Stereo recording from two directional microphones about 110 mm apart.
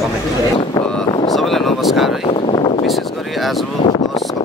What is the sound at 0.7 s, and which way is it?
Vehicle, 45° left (ahead or behind).